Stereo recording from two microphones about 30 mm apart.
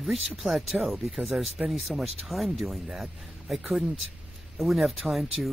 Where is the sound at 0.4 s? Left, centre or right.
Centre.